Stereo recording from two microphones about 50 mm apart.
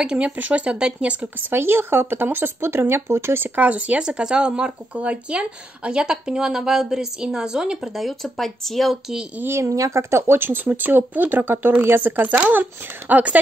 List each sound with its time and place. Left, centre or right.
0.0 s speech: centre
0.4 s speech: right
0.7 s speech: centre
1.5 s speech: right
3.5 s speech: right
7.9 s speech: centre
9.5 s speech: right